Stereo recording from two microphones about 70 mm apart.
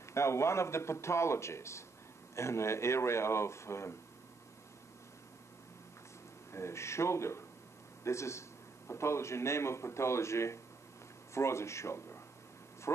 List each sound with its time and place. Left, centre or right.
0.1 s a man's voice: left
6.5 s a man's voice: left